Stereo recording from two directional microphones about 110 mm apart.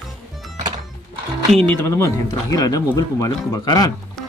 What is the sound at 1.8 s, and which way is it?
Speech, 30° left (ahead or behind).